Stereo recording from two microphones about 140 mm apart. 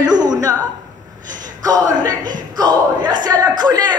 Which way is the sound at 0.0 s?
30° right (ahead or behind).